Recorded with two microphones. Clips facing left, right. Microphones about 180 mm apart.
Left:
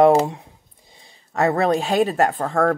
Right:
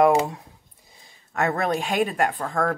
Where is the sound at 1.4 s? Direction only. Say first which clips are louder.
Left 5 dB; 35° left (ahead or behind).